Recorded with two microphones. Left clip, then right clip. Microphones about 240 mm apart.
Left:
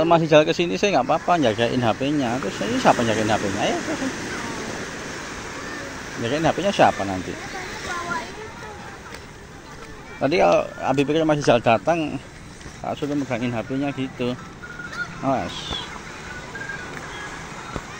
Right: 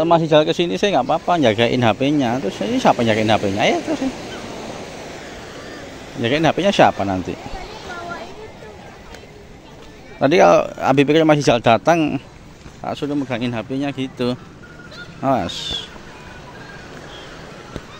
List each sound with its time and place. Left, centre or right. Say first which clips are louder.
0.0 s speech: right 2 dB; centre
6.2 s a man's voice: right 5 dB; right
10.2 s a man's voice: right 6 dB; right
12.8 s speech: right 3 dB; centre